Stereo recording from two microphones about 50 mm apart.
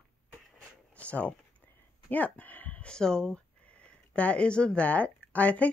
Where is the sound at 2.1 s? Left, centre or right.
Left.